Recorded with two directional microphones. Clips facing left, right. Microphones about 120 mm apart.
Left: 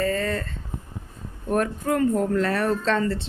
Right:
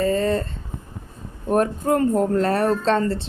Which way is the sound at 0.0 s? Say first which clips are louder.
Right 5 dB; 25° right (ahead or behind).